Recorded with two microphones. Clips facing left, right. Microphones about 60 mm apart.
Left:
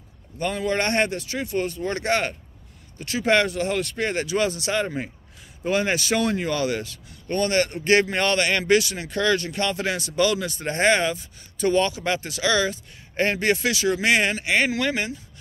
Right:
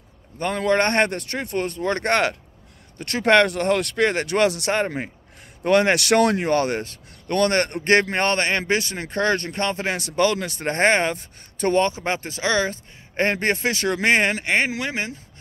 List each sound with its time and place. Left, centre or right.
0.4 s speech: right
4.8 s a man's voice: right
5.6 s speech: right
6.4 s speech: right
7.2 s a man's voice: right
14.6 s speech: right